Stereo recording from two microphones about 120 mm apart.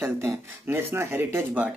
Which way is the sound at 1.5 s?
10° right (ahead or behind).